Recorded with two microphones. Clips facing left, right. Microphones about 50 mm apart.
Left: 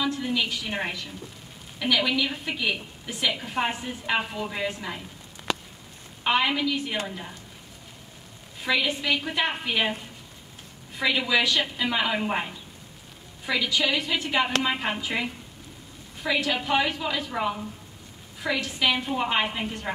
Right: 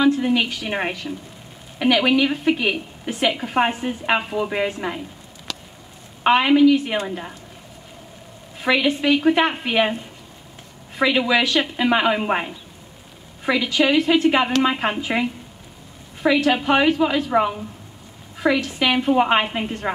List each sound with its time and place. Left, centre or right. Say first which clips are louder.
0.0 s a woman's voice: right 9 dB; right
5.5 s a sound: left 5 dB; left
6.2 s a woman's voice: right 10 dB; right
8.6 s a woman's voice: right 7 dB; right
11.0 s a woman's voice: right 6 dB; right
13.5 s a woman's voice: right 7 dB; right